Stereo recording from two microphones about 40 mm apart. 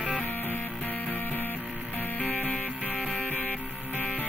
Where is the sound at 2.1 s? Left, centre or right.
Left.